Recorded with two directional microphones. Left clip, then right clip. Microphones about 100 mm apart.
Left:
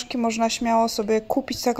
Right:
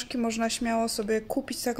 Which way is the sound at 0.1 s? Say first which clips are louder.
Left 6 dB; 20° left (ahead or behind).